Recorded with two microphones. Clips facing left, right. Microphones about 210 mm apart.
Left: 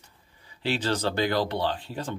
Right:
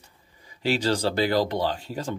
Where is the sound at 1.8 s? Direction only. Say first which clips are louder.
Right 2 dB; 10° right (ahead or behind).